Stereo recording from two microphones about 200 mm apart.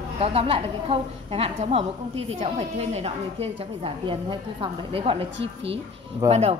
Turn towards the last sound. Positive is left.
turn(degrees=-30)  # may be behind; listen again after turning